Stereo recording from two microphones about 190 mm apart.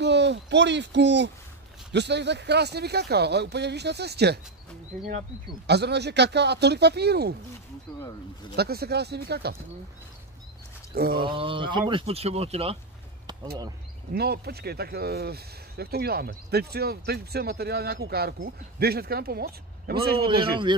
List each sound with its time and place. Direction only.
0.0 s speech: 65° right (ahead or behind)
5.7 s speech: 60° right (ahead or behind)
8.5 s speech: 55° right (ahead or behind)
11.0 s a sound: 50° right (ahead or behind)
11.2 s speech: 25° right (ahead or behind)
14.1 s speech: 55° right (ahead or behind)